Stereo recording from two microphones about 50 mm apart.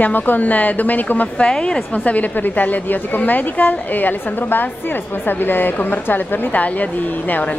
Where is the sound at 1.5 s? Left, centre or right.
Left.